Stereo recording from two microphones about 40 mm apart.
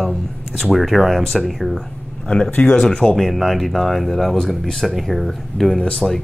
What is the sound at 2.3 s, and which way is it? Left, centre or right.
Speech, left.